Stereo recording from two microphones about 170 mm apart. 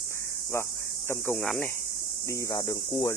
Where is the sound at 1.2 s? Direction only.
5° left (ahead or behind).